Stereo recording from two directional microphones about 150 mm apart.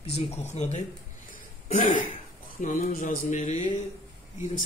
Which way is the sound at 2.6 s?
60° left (ahead or behind).